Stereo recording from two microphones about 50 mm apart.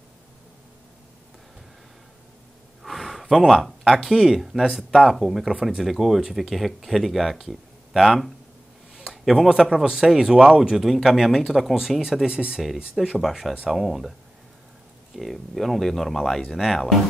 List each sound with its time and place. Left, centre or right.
2.8 s speech: centre
15.1 s speech: centre